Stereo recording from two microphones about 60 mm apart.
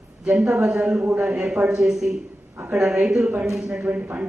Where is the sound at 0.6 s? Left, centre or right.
Centre.